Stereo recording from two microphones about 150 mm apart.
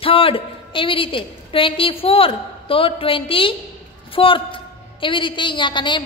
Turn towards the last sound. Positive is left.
turn(degrees=30)  # may be behind; listen again after turning